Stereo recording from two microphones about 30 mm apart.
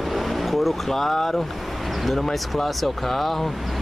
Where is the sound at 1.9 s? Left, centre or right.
Centre.